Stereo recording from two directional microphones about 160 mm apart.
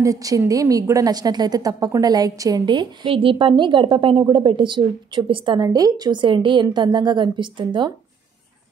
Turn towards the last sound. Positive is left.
turn(degrees=-30)  # may be behind; listen again after turning